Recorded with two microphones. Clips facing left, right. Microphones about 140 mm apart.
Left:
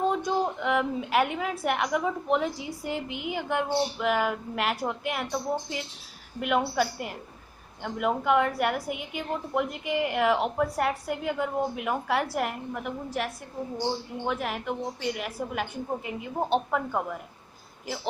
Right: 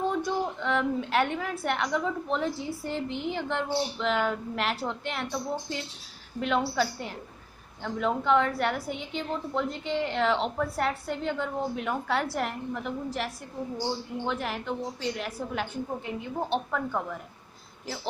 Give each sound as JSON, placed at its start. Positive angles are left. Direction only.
{"t": 0.0, "sound": "a woman's voice", "side_deg": 20}